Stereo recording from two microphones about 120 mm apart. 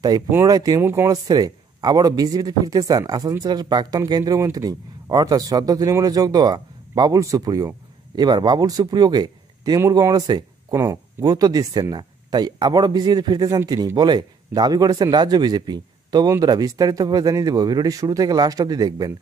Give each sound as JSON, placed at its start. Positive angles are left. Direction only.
{"t": 0.1, "sound": "a man's voice", "side_deg": -35}